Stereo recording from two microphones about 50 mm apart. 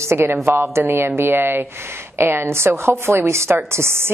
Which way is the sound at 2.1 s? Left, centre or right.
Right.